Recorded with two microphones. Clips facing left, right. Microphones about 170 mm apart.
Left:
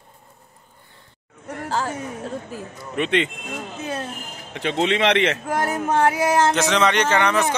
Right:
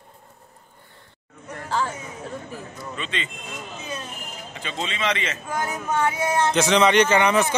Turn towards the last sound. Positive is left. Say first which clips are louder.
# right 2 dB
turn(degrees=-5)  # may be behind; listen again after turning